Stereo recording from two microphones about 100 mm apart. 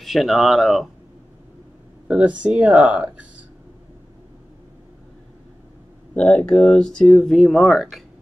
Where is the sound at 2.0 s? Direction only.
15° right (ahead or behind).